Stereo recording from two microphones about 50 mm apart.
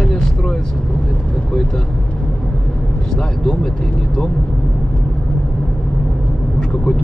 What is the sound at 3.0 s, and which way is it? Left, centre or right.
Vehicle, centre.